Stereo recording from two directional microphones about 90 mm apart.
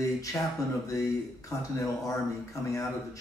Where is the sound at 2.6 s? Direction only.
35° left (ahead or behind).